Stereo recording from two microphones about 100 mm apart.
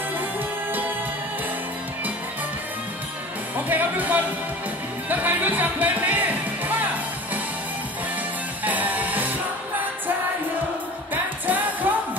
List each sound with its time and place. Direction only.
3.5 s speech: 15° right (ahead or behind)
8.6 s music: 15° right (ahead or behind)
11.4 s music: 15° right (ahead or behind)